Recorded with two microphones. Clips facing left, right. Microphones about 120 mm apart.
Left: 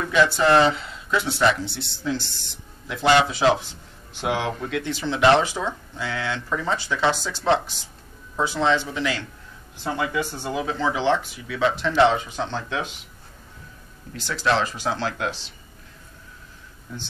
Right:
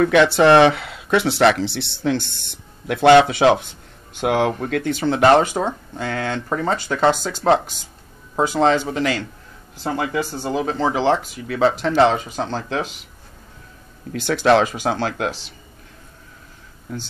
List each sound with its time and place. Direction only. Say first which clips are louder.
0.0 s speech: right 6 dB; 70° right (ahead or behind)
4.1 s speech: right 6 dB; 50° right (ahead or behind)
14.1 s speech: right 8 dB; 60° right (ahead or behind)